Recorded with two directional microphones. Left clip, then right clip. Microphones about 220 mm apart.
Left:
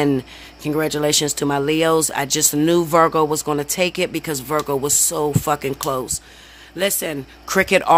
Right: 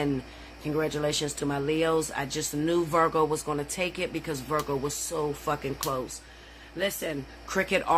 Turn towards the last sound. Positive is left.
turn(degrees=45)  # may be behind; listen again after turning